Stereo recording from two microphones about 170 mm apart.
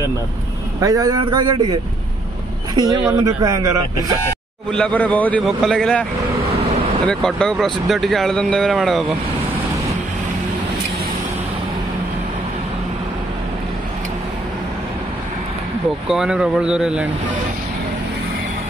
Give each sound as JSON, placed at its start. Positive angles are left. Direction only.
{"t": 0.7, "sound": "speech", "side_deg": -20}
{"t": 4.6, "sound": "speech", "side_deg": 5}
{"t": 7.1, "sound": "speech", "side_deg": 5}
{"t": 16.1, "sound": "speech", "side_deg": -5}